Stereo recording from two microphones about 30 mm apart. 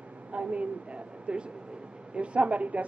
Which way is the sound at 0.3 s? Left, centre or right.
Right.